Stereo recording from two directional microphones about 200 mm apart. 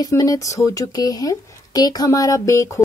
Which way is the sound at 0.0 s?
20° left (ahead or behind).